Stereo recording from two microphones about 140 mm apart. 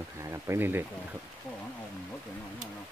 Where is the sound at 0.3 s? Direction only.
15° right (ahead or behind).